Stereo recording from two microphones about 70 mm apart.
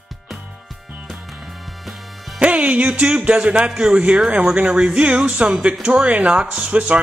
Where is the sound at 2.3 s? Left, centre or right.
Centre.